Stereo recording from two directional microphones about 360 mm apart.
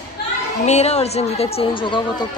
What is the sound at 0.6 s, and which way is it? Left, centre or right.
Speech, centre.